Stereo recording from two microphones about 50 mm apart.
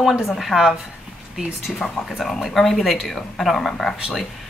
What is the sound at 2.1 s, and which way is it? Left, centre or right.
Speech, centre.